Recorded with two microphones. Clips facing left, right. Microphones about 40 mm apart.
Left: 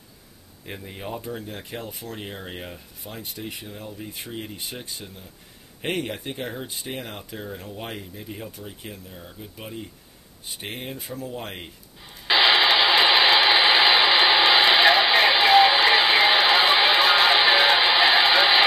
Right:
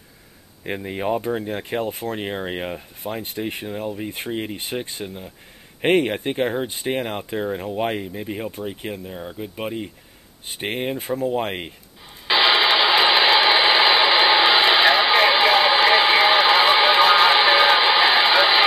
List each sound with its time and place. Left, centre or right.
0.7 s speech: right
12.3 s radio: centre